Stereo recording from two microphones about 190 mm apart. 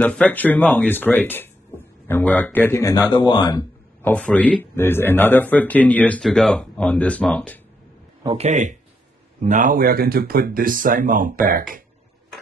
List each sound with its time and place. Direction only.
0.0 s speech: 10° left (ahead or behind)
4.0 s speech: 5° left (ahead or behind)
8.2 s a man's voice: 25° right (ahead or behind)
8.5 s speech: 40° right (ahead or behind)